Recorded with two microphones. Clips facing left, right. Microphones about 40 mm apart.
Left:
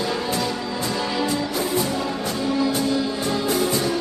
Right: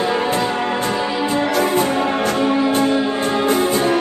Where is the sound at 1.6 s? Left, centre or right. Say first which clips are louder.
Right 6 dB; right.